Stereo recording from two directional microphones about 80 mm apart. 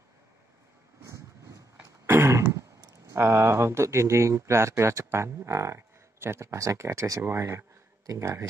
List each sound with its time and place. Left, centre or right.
1.8 s throat clearing: right
2.8 s a sound: right
3.2 s speech: right